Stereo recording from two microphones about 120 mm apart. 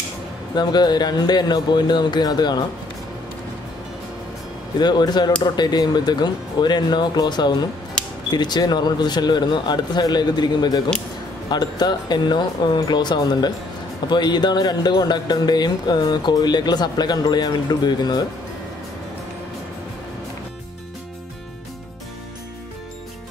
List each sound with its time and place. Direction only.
0.6 s speech: 35° left (ahead or behind)
4.7 s speech: 35° left (ahead or behind)